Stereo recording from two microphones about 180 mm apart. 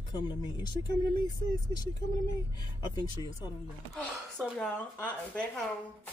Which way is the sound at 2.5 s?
20° left (ahead or behind).